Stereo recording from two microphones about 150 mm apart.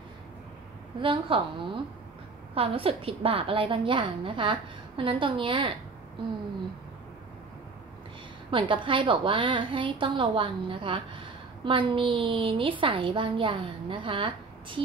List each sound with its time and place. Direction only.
1.0 s a woman's voice: 35° right (ahead or behind)
8.5 s a woman's voice: 35° right (ahead or behind)